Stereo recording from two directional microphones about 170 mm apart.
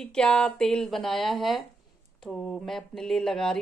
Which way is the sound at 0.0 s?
5° left (ahead or behind).